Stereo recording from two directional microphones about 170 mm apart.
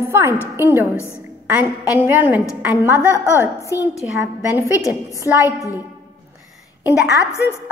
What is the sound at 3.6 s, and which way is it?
A woman's voice, 15° right (ahead or behind).